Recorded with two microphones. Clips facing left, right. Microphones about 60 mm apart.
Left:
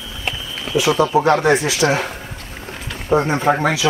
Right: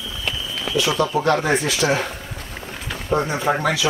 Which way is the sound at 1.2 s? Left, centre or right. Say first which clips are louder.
Left 4 dB; centre.